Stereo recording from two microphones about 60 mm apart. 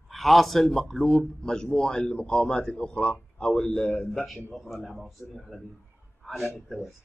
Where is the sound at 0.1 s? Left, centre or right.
Centre; by 4.1 s left.